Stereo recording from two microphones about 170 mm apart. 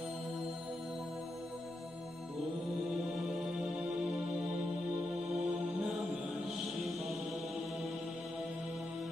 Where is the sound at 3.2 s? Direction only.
5° right (ahead or behind).